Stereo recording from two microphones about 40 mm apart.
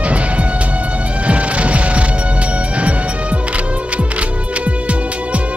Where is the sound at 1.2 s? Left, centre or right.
Right.